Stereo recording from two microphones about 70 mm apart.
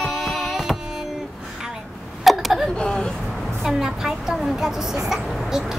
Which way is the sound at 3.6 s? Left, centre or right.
Centre.